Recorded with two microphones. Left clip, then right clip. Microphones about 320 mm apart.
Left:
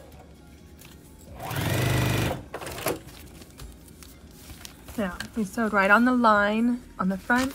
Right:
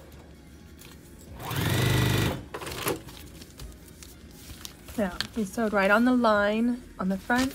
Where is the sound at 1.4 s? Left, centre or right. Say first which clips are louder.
Even; centre.